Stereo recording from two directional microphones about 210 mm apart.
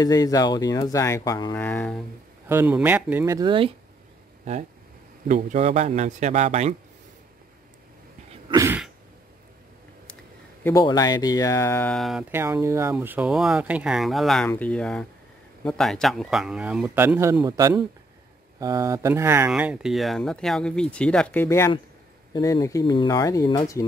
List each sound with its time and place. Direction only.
0.0 s speech: 15° left (ahead or behind)
2.4 s speech: 10° right (ahead or behind)
5.3 s a man's voice: 35° right (ahead or behind)
8.5 s cough: 15° right (ahead or behind)
10.6 s speech: 15° left (ahead or behind); by 12.3 s centre (ahead or behind)
12.3 s speech: 10° right (ahead or behind); by 23.9 s 15° left (ahead or behind)